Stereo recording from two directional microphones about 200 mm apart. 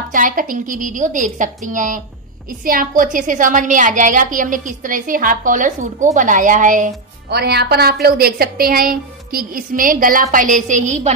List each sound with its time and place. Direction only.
0.1 s a woman's voice: 45° right (ahead or behind)